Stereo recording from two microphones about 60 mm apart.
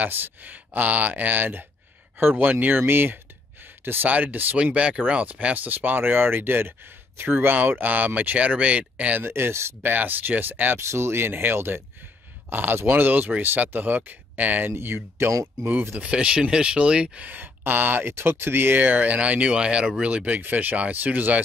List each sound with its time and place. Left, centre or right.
0.0 s speech: right
9.2 s speech: right
9.8 s speech: right
10.8 s speech: right
14.7 s speech: right
16.0 s speech: centre